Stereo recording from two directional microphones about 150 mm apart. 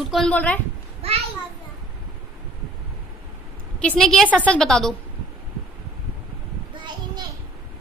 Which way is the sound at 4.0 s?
5° left (ahead or behind).